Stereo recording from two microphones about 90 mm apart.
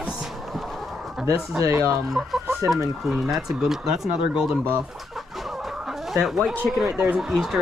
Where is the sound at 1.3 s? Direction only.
35° right (ahead or behind).